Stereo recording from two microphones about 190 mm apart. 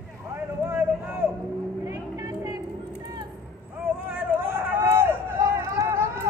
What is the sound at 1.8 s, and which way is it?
Vehicle, 15° right (ahead or behind).